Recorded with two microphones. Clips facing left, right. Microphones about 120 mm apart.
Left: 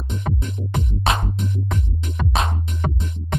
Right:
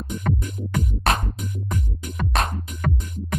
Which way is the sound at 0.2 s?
25° left (ahead or behind).